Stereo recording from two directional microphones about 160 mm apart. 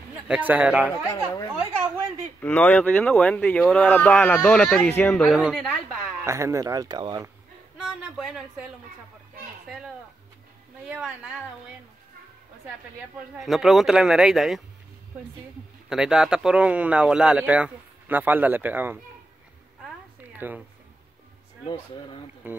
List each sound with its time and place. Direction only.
0.3 s speech: 10° right (ahead or behind)
2.4 s speech: 10° left (ahead or behind)
5.1 s speech: centre (ahead or behind)
6.2 s speech: 20° right (ahead or behind)
7.8 s speech: centre (ahead or behind)
10.9 s speech: 5° right (ahead or behind)
13.4 s speech: centre (ahead or behind)
15.9 s speech: 5° right (ahead or behind)
20.3 s speech: 10° right (ahead or behind)
21.6 s speech: 30° left (ahead or behind)
22.4 s speech: 10° right (ahead or behind)